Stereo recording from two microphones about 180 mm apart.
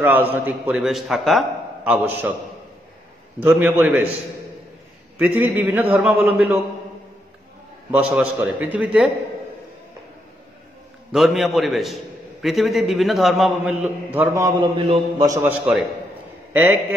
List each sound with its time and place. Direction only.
0.0 s a man's voice: 10° right (ahead or behind)
3.3 s a man's voice: 10° right (ahead or behind)
5.2 s a man's voice: 10° right (ahead or behind)
7.9 s a man's voice: 5° right (ahead or behind)
11.1 s a man's voice: centre (ahead or behind)
14.1 s a man's voice: 15° right (ahead or behind)